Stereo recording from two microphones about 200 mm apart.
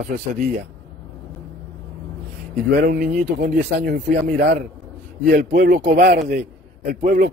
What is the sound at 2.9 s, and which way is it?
A man's voice, 45° right (ahead or behind).